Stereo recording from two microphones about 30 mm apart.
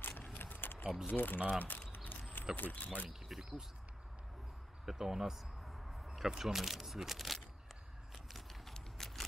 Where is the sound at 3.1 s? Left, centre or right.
Centre.